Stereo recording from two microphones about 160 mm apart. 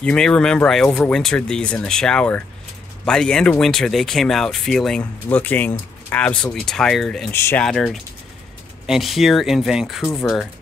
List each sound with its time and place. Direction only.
0.0 s speech: 5° left (ahead or behind)
7.3 s speech: 15° left (ahead or behind)
7.6 s speech: 5° left (ahead or behind)